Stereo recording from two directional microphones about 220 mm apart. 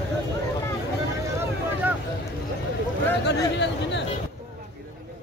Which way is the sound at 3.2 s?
50° left (ahead or behind).